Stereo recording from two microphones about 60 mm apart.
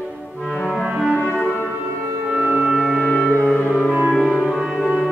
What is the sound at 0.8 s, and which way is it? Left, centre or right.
Music, centre.